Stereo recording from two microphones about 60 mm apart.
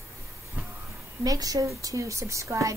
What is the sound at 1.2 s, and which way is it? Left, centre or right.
Speech, right.